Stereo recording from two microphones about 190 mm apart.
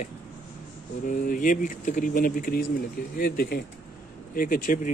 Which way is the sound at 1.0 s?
45° left (ahead or behind).